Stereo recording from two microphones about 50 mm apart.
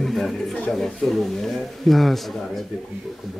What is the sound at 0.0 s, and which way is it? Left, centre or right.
Speech, centre.